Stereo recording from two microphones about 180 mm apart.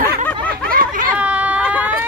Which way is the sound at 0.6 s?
50° right (ahead or behind).